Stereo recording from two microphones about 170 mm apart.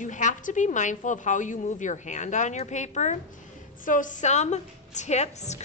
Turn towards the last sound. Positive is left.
turn(degrees=40)  # may be behind; listen again after turning